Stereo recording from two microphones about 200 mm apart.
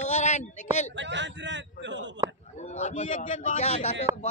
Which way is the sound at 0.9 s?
65° right (ahead or behind).